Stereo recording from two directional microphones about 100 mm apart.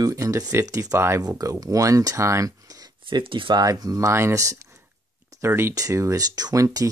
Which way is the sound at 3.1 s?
55° right (ahead or behind).